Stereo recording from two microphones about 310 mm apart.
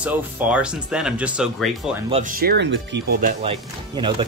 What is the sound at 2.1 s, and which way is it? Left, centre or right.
Speech, right.